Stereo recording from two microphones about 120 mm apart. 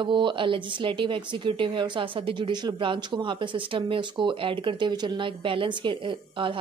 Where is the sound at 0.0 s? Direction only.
40° right (ahead or behind).